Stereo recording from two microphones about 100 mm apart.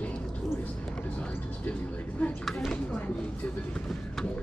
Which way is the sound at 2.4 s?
5° left (ahead or behind).